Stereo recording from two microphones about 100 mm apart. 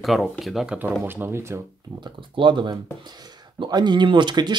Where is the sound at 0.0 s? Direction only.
Centre (ahead or behind).